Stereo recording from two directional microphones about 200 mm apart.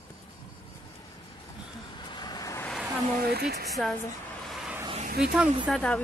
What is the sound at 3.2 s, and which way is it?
Speech, 50° right (ahead or behind).